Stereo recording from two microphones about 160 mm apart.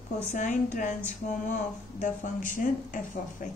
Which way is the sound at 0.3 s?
50° left (ahead or behind).